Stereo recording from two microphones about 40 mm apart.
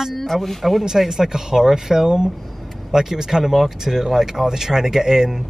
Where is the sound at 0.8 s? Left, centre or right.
Centre.